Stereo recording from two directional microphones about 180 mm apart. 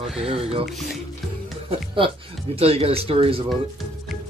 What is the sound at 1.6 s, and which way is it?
Speech, 30° right (ahead or behind).